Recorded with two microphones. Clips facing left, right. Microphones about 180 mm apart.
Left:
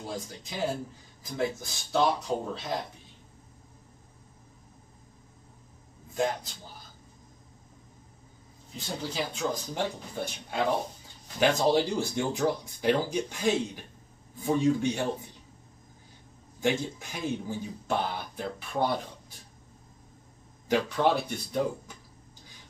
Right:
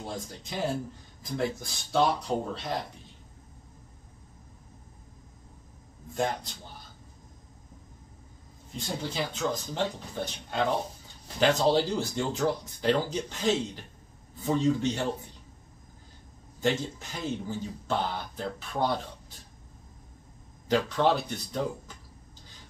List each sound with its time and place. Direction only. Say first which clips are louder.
0.0 s speech: even; centre (ahead or behind)
6.1 s speech: left 1 dB; centre (ahead or behind)
8.7 s speech: right 1 dB; 5° left (ahead or behind)
16.6 s speech: even; 15° left (ahead or behind)
20.7 s speech: even; 10° left (ahead or behind)